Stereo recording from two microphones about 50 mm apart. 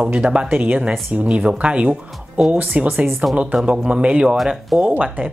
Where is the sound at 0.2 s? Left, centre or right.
Right.